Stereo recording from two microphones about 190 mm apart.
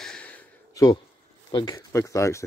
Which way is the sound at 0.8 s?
20° left (ahead or behind).